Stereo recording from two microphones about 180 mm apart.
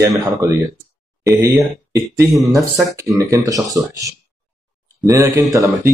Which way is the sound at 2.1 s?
15° right (ahead or behind).